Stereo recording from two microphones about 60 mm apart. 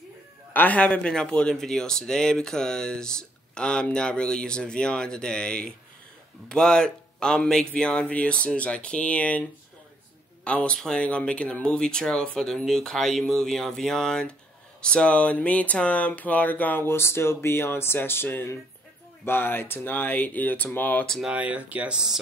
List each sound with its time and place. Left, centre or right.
0.5 s speech: left
10.4 s speech: centre
16.8 s speech: left
21.3 s speech: right
21.9 s speech: centre